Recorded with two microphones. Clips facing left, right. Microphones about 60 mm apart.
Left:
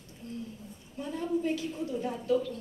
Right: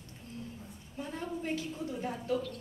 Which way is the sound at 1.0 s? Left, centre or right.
Right.